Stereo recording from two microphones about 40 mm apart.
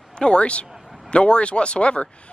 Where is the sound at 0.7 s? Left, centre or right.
Centre.